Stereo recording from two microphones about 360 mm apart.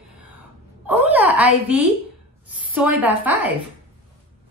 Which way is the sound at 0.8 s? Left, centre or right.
Centre.